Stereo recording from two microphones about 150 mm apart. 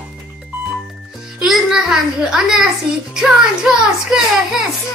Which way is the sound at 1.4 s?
5° right (ahead or behind).